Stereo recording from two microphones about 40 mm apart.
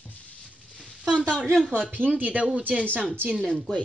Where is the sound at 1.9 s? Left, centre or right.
Right.